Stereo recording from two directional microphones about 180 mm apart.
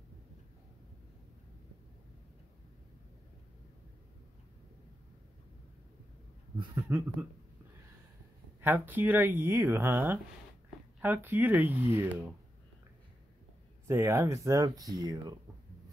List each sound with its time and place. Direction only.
6.9 s speech: 15° right (ahead or behind)
8.5 s speech: 10° right (ahead or behind)
13.8 s speech: 15° right (ahead or behind)